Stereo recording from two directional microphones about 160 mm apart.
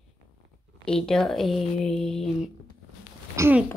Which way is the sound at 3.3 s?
15° right (ahead or behind).